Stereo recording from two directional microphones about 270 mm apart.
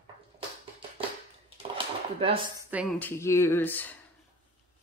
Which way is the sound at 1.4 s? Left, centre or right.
Centre.